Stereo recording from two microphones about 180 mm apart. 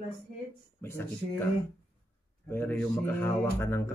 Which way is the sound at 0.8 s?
15° left (ahead or behind).